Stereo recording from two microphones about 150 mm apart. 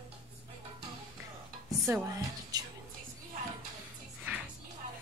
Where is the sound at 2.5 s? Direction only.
25° right (ahead or behind).